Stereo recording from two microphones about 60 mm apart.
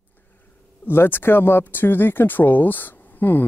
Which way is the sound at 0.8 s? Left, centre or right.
Left.